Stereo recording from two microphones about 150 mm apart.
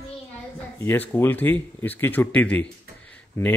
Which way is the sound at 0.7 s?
15° left (ahead or behind).